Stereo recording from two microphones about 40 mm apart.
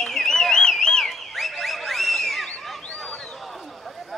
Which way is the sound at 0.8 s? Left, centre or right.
Centre.